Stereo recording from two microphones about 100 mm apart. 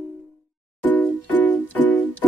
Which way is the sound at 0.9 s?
20° left (ahead or behind).